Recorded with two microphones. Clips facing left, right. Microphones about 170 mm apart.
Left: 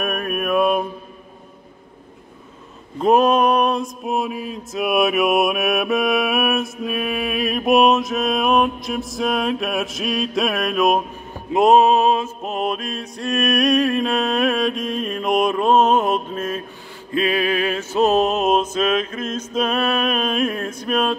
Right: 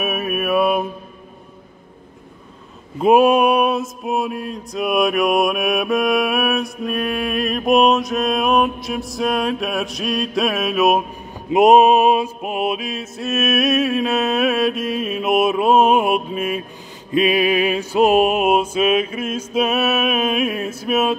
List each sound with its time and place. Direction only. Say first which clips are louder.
0.0 s mantra: right 1 dB; 5° right (ahead or behind)
3.0 s mantra: right 2 dB; 10° right (ahead or behind)
11.5 s mantra: right 2 dB; 15° right (ahead or behind)